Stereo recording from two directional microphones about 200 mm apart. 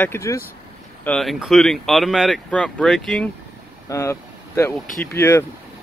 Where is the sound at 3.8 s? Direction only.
15° left (ahead or behind).